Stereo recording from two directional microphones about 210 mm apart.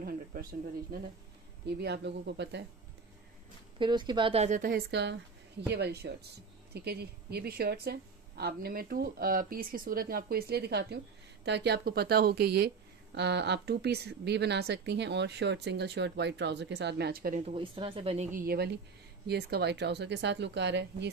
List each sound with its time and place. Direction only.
0.0 s a woman's voice: 45° right (ahead or behind)
3.7 s a woman's voice: 20° right (ahead or behind); by 17.4 s 45° right (ahead or behind)
17.4 s speech: 25° right (ahead or behind); by 21.1 s 55° right (ahead or behind)